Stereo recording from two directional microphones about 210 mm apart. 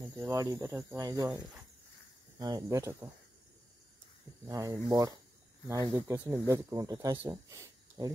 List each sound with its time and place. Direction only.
0.2 s speech: 15° right (ahead or behind)
4.5 s speech: 15° right (ahead or behind)